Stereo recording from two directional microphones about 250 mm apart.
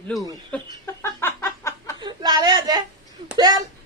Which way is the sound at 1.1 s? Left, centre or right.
Centre.